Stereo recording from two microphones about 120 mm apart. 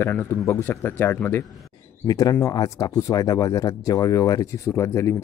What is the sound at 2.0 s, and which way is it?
Speech, 30° left (ahead or behind).